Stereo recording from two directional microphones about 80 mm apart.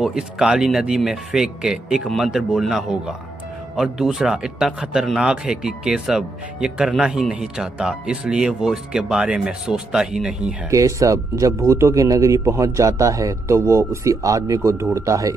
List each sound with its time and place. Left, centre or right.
0.0 s a man's voice: centre
10.7 s speech: right